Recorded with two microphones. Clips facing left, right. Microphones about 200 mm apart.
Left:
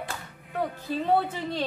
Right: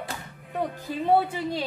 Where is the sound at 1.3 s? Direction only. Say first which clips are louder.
Right 1 dB; 10° right (ahead or behind).